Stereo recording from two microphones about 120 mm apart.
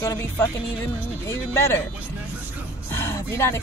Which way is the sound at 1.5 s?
20° left (ahead or behind).